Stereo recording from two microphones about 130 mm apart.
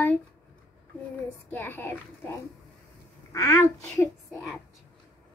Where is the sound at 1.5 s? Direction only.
15° left (ahead or behind).